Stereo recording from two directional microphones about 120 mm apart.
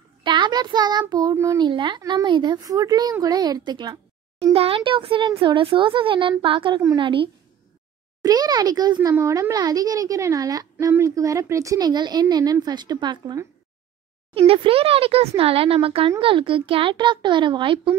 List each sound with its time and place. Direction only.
0.2 s child singing: 40° right (ahead or behind)
1.3 s a woman's voice: 25° right (ahead or behind)
1.7 s a woman's voice: 40° right (ahead or behind)
4.6 s speech: 50° right (ahead or behind)
8.2 s a woman's voice: 35° right (ahead or behind)
14.3 s speech: 50° right (ahead or behind)